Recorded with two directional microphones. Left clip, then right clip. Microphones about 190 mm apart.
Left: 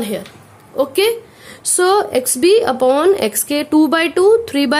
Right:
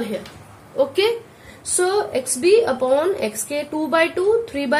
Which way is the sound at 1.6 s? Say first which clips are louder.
Left 6 dB; 55° left (ahead or behind).